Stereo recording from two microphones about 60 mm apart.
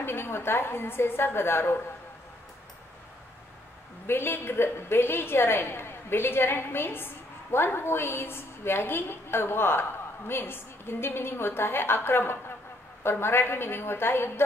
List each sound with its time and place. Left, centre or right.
0.0 s a woman's voice: left
4.1 s a woman's voice: left